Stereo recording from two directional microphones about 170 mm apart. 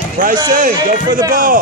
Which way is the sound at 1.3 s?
55° right (ahead or behind).